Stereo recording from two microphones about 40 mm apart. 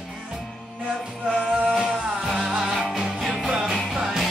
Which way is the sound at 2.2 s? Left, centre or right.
Centre.